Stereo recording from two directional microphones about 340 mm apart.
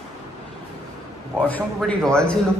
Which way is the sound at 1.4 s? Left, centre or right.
Centre.